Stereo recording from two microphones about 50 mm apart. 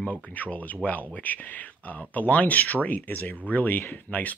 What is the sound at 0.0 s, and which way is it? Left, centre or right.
Speech, left.